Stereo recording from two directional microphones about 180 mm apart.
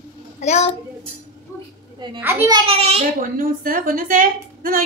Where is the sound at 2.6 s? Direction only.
35° right (ahead or behind).